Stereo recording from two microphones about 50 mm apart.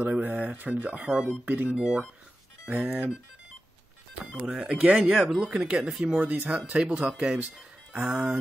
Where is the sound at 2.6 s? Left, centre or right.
Right.